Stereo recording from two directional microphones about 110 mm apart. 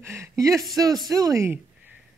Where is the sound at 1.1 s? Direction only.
35° right (ahead or behind).